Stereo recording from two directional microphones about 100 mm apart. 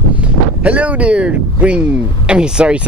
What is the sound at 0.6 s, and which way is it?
Speech, 15° right (ahead or behind).